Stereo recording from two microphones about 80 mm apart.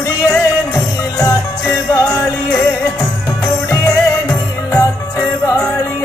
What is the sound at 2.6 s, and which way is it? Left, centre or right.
Music, left.